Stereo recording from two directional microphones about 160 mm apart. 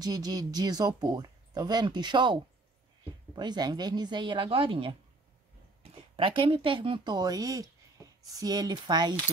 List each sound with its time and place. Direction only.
0.0 s speech: 25° right (ahead or behind)
3.3 s speech: 25° right (ahead or behind)